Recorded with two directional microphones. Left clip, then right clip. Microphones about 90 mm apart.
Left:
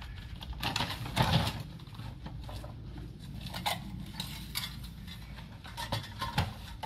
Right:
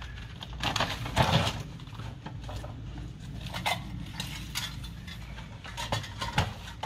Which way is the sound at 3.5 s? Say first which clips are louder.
Right 4 dB; 25° left (ahead or behind).